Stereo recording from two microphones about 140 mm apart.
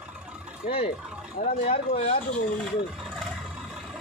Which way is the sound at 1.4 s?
55° left (ahead or behind).